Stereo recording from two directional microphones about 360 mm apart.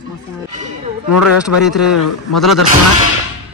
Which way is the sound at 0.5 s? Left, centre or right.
Centre.